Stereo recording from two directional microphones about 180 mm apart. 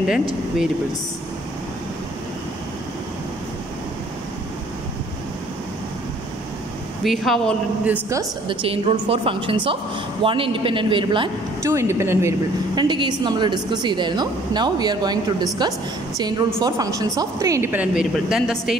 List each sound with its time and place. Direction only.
7.0 s a woman's voice: centre (ahead or behind)
8.5 s a woman's voice: 35° right (ahead or behind)
11.6 s a woman's voice: 15° right (ahead or behind)